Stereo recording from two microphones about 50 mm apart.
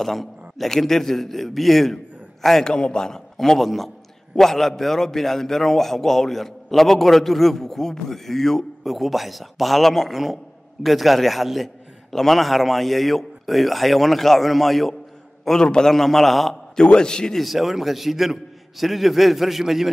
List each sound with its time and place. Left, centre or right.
0.0 s a man's voice: centre
2.6 s a man's voice: centre
16.8 s a man's voice: centre
17.4 s a man's voice: centre